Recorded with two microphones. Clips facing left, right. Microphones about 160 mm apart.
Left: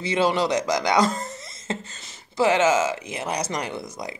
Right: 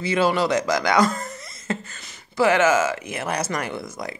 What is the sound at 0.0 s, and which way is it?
Speech, 20° left (ahead or behind).